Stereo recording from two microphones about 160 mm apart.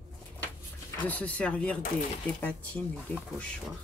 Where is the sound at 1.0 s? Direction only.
10° left (ahead or behind).